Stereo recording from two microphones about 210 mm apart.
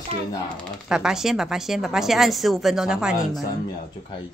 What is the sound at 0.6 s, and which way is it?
Speech, 5° right (ahead or behind).